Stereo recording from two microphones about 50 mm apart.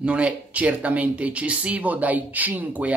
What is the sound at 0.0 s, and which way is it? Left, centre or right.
Speech, right.